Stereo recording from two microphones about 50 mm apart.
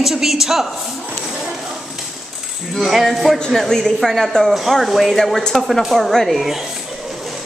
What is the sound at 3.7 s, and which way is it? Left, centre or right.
A woman's voice, centre.